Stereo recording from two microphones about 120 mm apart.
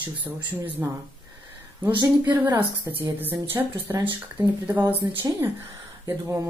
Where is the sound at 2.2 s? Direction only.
15° right (ahead or behind).